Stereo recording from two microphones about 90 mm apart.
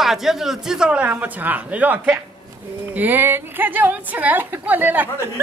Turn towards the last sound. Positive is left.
turn(degrees=-20)  # may be behind; listen again after turning